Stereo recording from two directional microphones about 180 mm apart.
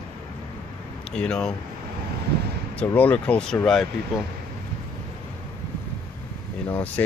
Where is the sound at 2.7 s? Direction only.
10° left (ahead or behind).